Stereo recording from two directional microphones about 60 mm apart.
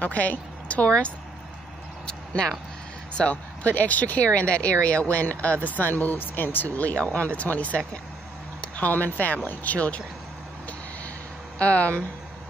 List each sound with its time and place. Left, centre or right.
0.0 s a woman's voice: left
2.0 s a sound: centre
3.2 s speech: left
11.5 s speech: left